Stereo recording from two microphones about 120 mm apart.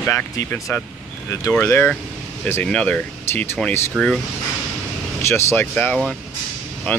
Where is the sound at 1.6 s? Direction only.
15° left (ahead or behind).